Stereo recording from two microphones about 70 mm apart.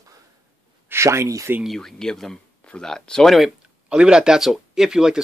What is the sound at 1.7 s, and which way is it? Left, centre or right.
Speech, centre.